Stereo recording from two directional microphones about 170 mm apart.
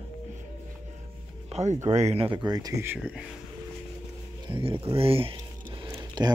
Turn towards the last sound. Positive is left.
turn(degrees=-25)  # may be behind; listen again after turning